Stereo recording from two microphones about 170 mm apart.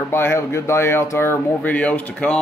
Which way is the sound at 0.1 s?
15° left (ahead or behind).